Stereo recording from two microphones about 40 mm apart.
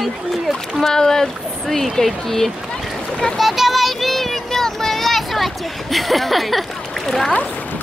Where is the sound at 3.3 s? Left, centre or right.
Centre.